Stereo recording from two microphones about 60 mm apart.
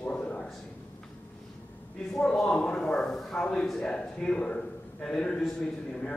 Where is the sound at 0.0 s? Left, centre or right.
Centre.